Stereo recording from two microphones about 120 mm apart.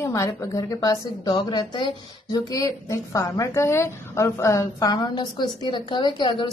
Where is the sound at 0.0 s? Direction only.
25° left (ahead or behind).